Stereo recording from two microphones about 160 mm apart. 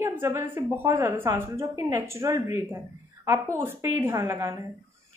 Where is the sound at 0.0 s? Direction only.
15° right (ahead or behind).